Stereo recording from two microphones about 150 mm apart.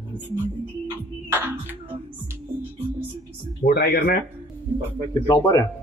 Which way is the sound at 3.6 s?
90° left.